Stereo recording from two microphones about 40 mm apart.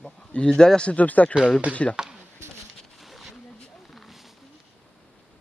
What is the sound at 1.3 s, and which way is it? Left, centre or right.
Speech, left.